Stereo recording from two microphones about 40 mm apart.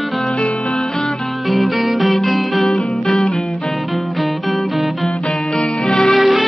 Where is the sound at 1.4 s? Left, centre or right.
Centre.